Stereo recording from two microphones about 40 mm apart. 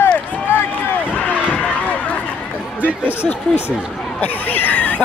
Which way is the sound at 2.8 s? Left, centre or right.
Right.